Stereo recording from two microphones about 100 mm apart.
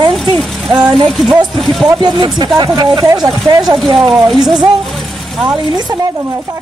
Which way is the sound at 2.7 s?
35° right (ahead or behind).